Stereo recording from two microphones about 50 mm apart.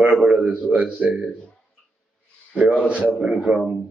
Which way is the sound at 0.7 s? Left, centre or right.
Right.